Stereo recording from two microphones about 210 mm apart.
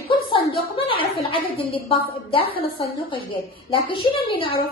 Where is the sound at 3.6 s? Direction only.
25° left (ahead or behind).